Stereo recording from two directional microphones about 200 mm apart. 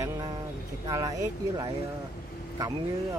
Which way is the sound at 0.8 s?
20° right (ahead or behind).